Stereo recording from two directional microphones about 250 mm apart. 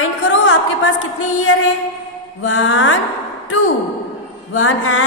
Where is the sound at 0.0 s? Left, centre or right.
Left.